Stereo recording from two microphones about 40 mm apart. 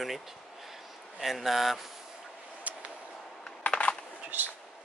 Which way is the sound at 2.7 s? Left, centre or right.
Right.